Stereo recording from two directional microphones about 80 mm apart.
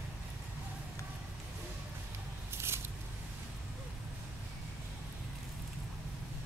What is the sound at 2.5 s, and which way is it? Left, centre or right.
Scissors, right.